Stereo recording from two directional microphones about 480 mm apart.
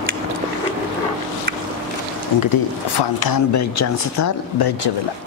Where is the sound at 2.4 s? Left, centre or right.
Left.